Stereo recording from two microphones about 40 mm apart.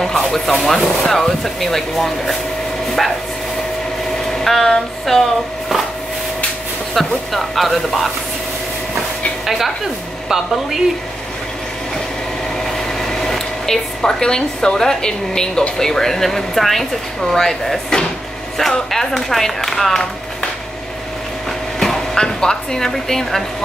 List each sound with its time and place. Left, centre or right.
0.0 s speech: centre
4.3 s a sound: centre
6.9 s speech: centre
10.2 s a woman's voice: centre
12.6 s speech: centre
21.7 s speech: centre